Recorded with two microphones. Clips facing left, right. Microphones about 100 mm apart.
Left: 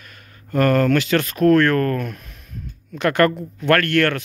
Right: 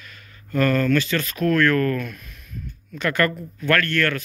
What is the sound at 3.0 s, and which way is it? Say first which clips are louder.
Speech: left 5 dB; 55° left (ahead or behind).